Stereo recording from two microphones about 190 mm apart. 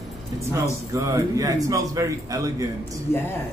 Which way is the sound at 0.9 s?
15° right (ahead or behind).